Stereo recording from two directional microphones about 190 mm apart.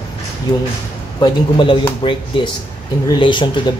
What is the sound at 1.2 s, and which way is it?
Speech, 25° left (ahead or behind).